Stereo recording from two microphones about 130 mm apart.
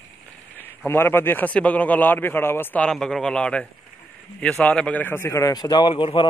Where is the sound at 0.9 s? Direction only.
20° left (ahead or behind).